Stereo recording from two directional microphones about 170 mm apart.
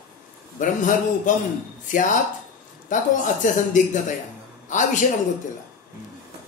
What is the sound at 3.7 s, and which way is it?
Speech, 45° left (ahead or behind).